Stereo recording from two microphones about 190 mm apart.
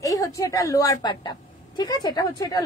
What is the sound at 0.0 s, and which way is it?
A woman's voice, 15° left (ahead or behind).